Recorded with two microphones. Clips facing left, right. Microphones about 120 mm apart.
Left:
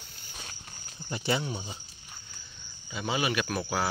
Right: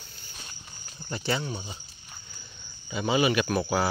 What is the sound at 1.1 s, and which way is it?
Speech, 15° left (ahead or behind).